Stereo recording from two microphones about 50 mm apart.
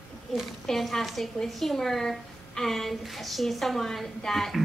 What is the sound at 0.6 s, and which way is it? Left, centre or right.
A woman's voice, centre.